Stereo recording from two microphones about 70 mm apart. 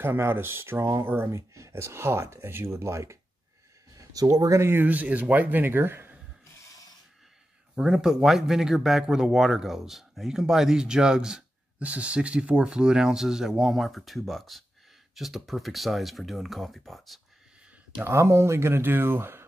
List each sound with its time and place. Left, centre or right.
0.0 s speech: right
1.3 s speech: right
3.9 s a sound: right
4.6 s speech: right
4.8 s speech: right
7.7 s speech: centre
18.0 s speech: right